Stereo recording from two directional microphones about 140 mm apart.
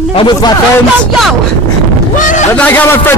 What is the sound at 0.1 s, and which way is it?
Speech, 35° left (ahead or behind).